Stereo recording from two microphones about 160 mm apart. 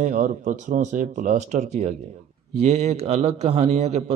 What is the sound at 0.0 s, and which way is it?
A man's voice, 55° right (ahead or behind).